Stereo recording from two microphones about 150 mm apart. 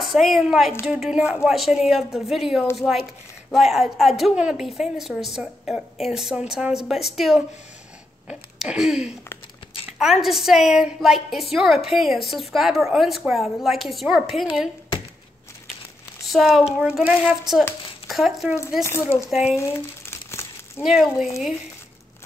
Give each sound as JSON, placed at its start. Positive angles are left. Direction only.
{"t": 0.0, "sound": "speech", "side_deg": 0}
{"t": 16.3, "sound": "speech", "side_deg": 0}
{"t": 18.6, "sound": "speech", "side_deg": 20}
{"t": 19.5, "sound": "crumpling", "side_deg": 15}
{"t": 20.8, "sound": "speech", "side_deg": -5}